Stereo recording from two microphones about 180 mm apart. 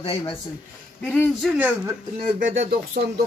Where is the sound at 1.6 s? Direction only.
10° right (ahead or behind).